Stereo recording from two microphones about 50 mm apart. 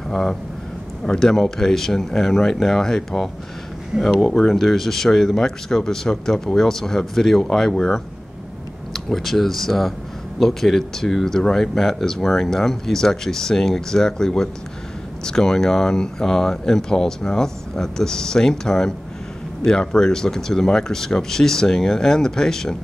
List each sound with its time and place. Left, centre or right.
0.1 s speech: centre
1.0 s speech: centre
8.9 s speech: centre